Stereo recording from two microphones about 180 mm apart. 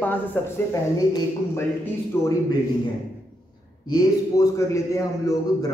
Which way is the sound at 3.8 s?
20° left (ahead or behind).